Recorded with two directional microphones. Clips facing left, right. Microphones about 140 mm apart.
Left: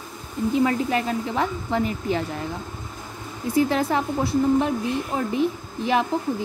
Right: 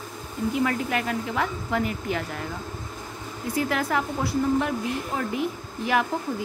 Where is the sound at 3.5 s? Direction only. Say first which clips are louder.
Left 5 dB; 25° left (ahead or behind).